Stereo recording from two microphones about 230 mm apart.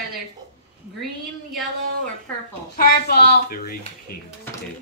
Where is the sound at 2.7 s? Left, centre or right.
Left.